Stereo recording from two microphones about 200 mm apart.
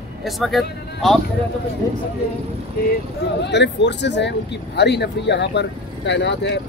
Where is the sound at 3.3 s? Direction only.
60° left (ahead or behind).